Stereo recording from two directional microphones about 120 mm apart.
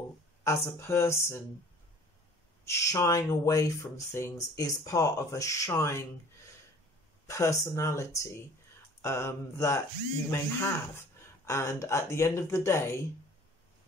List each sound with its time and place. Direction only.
0.4 s speech: 20° left (ahead or behind)
2.6 s speech: 25° left (ahead or behind)
7.2 s speech: 25° left (ahead or behind)